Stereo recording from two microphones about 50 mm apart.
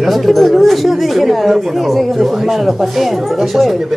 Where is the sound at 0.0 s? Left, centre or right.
Centre.